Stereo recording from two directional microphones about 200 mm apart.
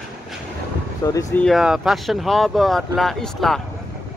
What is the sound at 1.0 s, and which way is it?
Speech, 15° left (ahead or behind).